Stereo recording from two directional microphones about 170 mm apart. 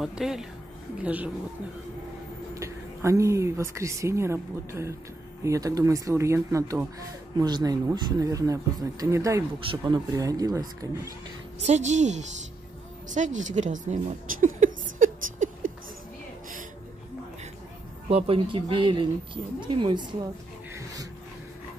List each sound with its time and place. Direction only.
0.0 s a woman's voice: centre (ahead or behind)
2.5 s speech: 15° right (ahead or behind)
9.6 s speech: 30° right (ahead or behind)
11.6 s a woman's voice: 45° right (ahead or behind)
18.1 s speech: 35° right (ahead or behind)
20.7 s a sound: 20° right (ahead or behind)